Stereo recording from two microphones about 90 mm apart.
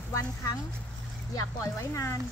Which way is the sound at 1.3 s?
35° left (ahead or behind).